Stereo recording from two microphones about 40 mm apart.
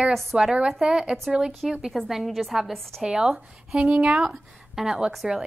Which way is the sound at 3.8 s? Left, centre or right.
Right.